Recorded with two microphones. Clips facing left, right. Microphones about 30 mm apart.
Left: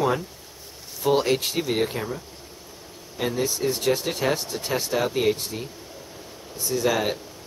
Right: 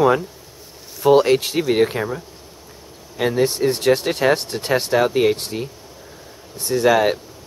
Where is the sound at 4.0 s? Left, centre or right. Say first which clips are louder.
Right 7 dB; right.